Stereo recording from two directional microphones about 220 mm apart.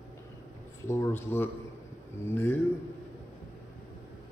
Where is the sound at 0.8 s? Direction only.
10° left (ahead or behind).